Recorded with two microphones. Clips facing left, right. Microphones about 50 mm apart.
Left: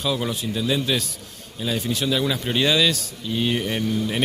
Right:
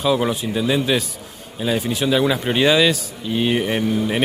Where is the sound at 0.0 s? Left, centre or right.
Centre.